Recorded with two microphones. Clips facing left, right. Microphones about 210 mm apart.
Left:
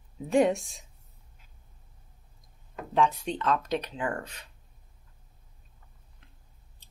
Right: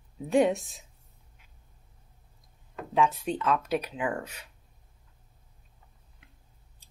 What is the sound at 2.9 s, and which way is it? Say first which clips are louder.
Speech: even; 5° right (ahead or behind).